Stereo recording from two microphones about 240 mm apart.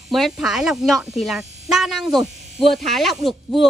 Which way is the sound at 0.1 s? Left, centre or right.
Centre.